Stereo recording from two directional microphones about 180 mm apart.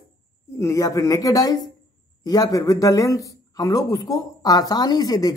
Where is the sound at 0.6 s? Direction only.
15° left (ahead or behind).